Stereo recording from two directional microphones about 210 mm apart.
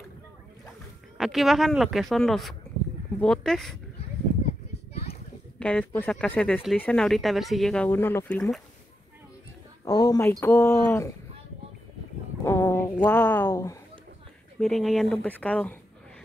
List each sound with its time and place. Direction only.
1.1 s speech: centre (ahead or behind)
5.6 s speech: 5° left (ahead or behind)
9.8 s speech: 15° left (ahead or behind)
12.4 s a sound: 10° left (ahead or behind)
14.6 s speech: centre (ahead or behind)